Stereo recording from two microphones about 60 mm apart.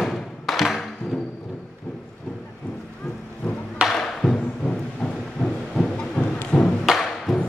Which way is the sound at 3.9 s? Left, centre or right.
Centre.